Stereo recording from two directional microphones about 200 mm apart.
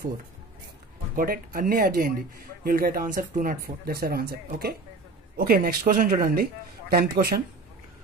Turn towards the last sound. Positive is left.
turn(degrees=-50)  # may be behind; listen again after turning